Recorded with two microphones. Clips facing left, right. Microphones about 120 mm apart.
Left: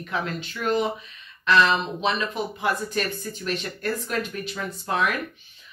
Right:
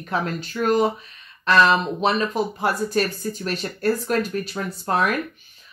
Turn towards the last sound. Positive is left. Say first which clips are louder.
# right 3 dB
turn(degrees=-40)  # may be behind; listen again after turning